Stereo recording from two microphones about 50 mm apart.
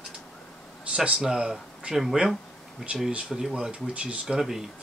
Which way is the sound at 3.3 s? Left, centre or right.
Centre.